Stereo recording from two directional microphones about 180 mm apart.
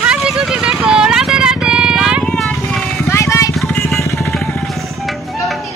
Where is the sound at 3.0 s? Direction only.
15° left (ahead or behind).